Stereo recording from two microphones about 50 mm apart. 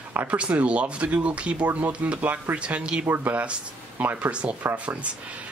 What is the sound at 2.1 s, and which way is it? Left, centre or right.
Speech, right.